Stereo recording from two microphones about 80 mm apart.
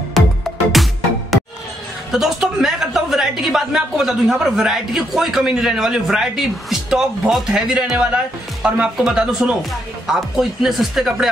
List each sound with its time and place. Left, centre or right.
0.2 s music: centre
2.1 s a woman's voice: centre